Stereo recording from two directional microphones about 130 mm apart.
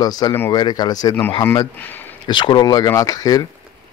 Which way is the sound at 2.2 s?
35° left (ahead or behind).